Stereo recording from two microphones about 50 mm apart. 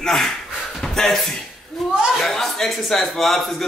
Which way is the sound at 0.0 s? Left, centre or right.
Centre.